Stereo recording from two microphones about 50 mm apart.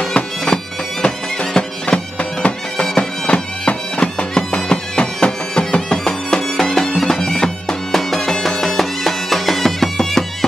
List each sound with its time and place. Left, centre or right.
1.0 s music: centre
2.1 s bagpipes: left; by 7.1 s centre
7.1 s music: centre